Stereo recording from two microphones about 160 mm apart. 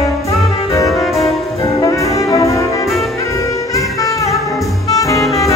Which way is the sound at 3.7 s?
20° left (ahead or behind).